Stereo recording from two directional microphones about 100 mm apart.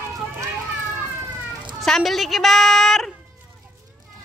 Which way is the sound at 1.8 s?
5° left (ahead or behind).